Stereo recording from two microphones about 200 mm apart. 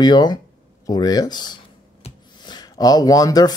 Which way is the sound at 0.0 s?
20° left (ahead or behind).